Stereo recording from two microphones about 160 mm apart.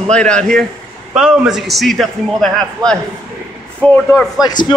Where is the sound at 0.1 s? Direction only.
5° left (ahead or behind).